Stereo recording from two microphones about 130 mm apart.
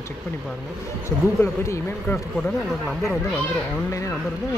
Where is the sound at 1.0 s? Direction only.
20° left (ahead or behind); by 3.8 s 5° left (ahead or behind).